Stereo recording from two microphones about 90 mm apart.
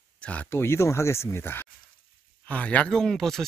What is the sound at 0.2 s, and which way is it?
Speech, 15° left (ahead or behind).